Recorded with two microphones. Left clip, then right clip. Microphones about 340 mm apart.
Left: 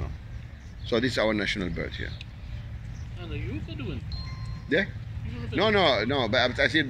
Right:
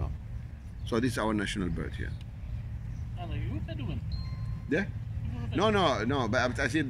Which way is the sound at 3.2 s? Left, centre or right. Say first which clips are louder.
Left 3 dB; right.